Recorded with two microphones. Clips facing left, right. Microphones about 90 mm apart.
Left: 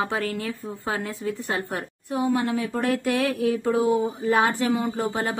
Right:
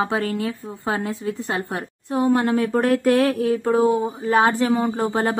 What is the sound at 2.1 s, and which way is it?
A woman's voice, 50° right (ahead or behind).